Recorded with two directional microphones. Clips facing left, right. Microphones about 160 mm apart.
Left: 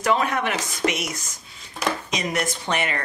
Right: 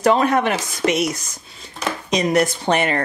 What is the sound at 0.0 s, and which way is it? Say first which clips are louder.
Speech: right 6 dB; 35° right (ahead or behind).